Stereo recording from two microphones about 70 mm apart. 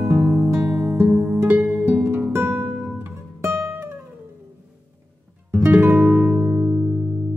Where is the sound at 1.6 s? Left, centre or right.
Centre.